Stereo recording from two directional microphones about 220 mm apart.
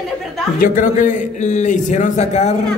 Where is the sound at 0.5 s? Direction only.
35° left (ahead or behind).